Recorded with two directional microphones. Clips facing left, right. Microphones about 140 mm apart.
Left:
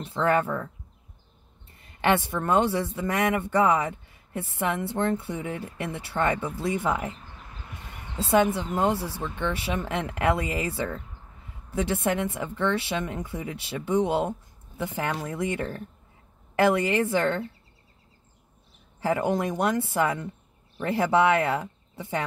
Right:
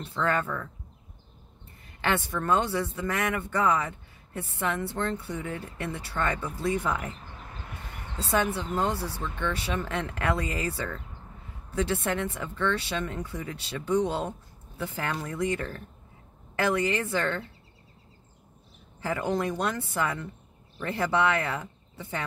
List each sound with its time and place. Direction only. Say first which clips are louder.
0.0 s speech: left 4 dB; 20° left (ahead or behind)
1.8 s speech: left 5 dB; 20° left (ahead or behind)
8.3 s speech: left 5 dB; 20° left (ahead or behind)
19.0 s speech: left 3 dB; 20° left (ahead or behind)